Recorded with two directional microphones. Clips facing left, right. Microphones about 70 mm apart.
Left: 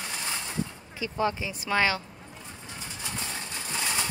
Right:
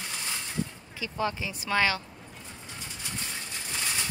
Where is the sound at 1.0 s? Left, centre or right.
Left.